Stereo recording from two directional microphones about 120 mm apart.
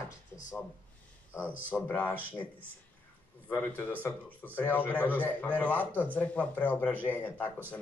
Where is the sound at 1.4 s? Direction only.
15° right (ahead or behind).